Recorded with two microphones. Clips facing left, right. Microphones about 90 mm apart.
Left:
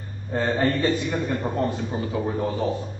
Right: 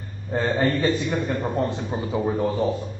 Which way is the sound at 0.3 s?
20° right (ahead or behind).